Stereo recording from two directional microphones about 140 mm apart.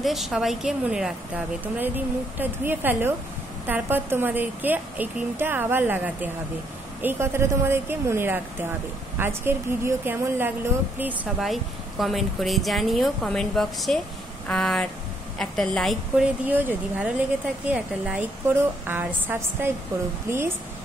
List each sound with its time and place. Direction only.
0.0 s a woman's voice: centre (ahead or behind)
11.3 s speech: centre (ahead or behind)
16.4 s a woman's voice: 15° right (ahead or behind)